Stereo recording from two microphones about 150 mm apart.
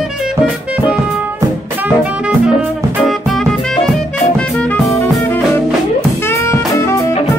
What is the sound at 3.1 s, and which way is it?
Music, centre (ahead or behind).